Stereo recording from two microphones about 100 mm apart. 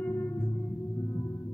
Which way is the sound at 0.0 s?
25° left (ahead or behind).